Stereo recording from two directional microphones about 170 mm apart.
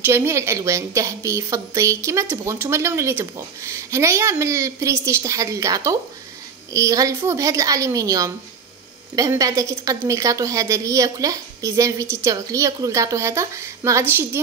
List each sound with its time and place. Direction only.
0.0 s a woman's voice: 15° right (ahead or behind)